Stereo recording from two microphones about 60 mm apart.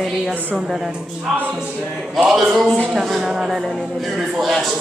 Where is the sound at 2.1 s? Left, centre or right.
Centre.